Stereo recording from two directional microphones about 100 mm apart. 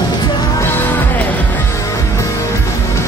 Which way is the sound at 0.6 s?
20° left (ahead or behind).